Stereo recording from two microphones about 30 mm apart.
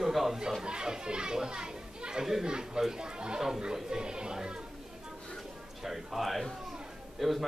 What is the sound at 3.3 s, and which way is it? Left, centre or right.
Music, centre.